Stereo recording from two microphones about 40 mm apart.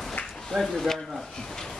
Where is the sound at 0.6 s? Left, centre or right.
Centre.